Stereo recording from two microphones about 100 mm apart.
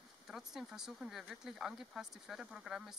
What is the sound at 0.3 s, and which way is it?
Speech, 5° right (ahead or behind).